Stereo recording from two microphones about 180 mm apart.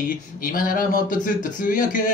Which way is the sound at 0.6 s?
50° left (ahead or behind).